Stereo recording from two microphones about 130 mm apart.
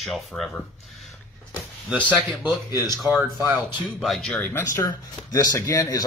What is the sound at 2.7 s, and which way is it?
Speech, 30° left (ahead or behind).